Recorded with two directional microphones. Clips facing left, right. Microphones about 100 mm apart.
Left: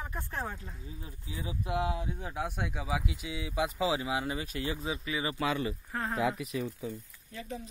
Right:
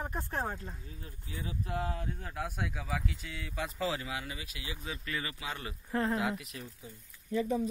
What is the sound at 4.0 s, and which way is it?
Speech, 25° left (ahead or behind).